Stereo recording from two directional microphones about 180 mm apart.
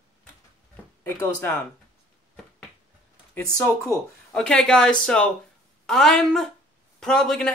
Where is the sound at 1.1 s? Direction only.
10° left (ahead or behind).